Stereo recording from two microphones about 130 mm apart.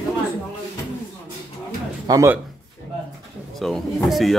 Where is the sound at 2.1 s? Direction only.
30° right (ahead or behind).